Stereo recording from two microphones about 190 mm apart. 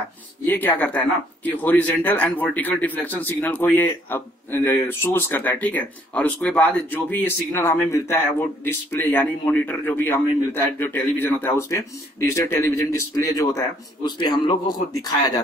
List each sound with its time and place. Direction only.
0.5 s a man's voice: 10° left (ahead or behind)